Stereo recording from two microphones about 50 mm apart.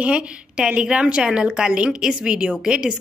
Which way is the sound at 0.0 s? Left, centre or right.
Right.